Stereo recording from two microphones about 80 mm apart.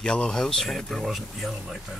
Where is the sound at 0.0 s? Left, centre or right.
Centre.